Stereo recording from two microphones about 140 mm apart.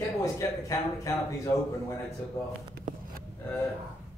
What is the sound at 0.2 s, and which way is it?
Speech, 20° left (ahead or behind).